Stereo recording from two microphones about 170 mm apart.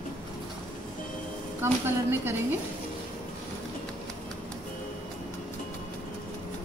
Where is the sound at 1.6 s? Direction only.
15° right (ahead or behind).